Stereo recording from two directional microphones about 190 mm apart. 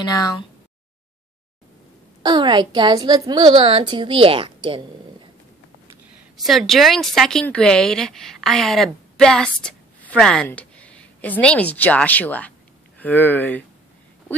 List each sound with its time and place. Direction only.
0.0 s speech: 20° left (ahead or behind)
2.2 s a woman's voice: 20° right (ahead or behind)
6.3 s a woman's voice: centre (ahead or behind)